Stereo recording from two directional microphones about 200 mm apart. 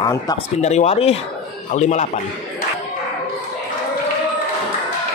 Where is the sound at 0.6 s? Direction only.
35° left (ahead or behind).